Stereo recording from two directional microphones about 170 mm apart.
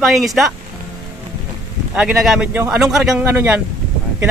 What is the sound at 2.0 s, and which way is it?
A man's voice, centre (ahead or behind).